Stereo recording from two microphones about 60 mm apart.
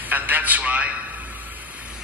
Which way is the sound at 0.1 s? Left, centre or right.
Right.